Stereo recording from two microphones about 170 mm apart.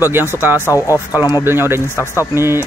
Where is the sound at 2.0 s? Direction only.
15° left (ahead or behind).